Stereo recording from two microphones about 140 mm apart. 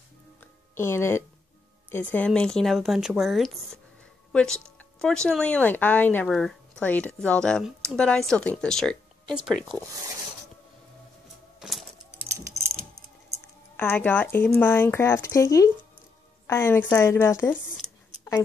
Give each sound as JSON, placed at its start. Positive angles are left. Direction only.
{"t": 0.4, "sound": "music", "side_deg": 20}
{"t": 1.9, "sound": "speech", "side_deg": 15}
{"t": 13.7, "sound": "a woman's voice", "side_deg": 10}